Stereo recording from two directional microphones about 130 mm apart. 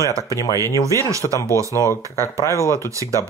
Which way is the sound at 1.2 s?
35° left (ahead or behind).